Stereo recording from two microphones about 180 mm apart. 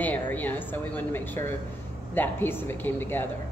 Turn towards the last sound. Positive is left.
turn(degrees=10)  # may be behind; listen again after turning